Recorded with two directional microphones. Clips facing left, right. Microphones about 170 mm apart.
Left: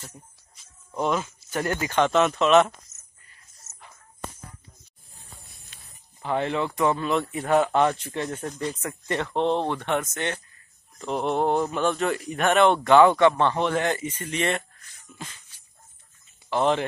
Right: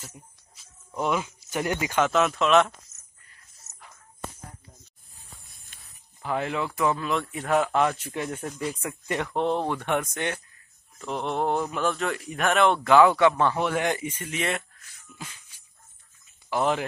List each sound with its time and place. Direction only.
0.0 s speech: 5° right (ahead or behind)
3.3 s music: centre (ahead or behind)
5.7 s a sound: 50° right (ahead or behind)
6.2 s speech: 5° right (ahead or behind)
11.1 s speech: centre (ahead or behind)
15.1 s music: 10° right (ahead or behind)
16.4 s speech: 5° right (ahead or behind)